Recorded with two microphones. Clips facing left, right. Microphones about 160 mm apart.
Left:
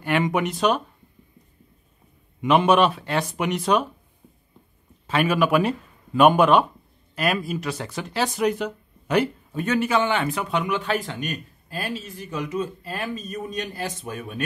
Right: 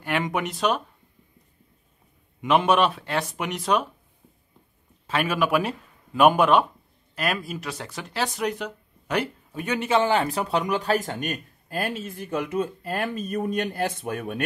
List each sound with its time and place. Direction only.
0.0 s speech: centre (ahead or behind)
2.4 s speech: centre (ahead or behind)
5.0 s speech: centre (ahead or behind)
9.6 s a man's voice: 15° right (ahead or behind)
9.8 s speech: 30° right (ahead or behind); by 14.4 s 55° right (ahead or behind)